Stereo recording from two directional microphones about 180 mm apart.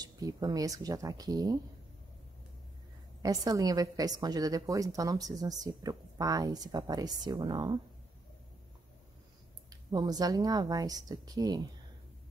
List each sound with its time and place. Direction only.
0.0 s a woman's voice: 20° right (ahead or behind)
3.2 s a woman's voice: 20° right (ahead or behind)
9.7 s a woman's voice: 20° right (ahead or behind)